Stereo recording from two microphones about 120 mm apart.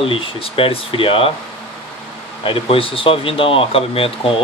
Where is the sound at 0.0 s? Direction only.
50° left (ahead or behind).